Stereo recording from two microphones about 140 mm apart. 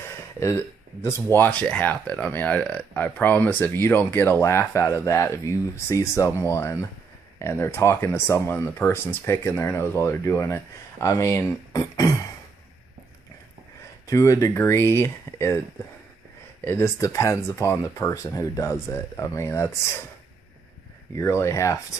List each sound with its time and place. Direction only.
0.0 s speech: 15° left (ahead or behind)
14.0 s speech: 20° left (ahead or behind)
16.6 s speech: 15° left (ahead or behind)
21.2 s speech: 20° left (ahead or behind)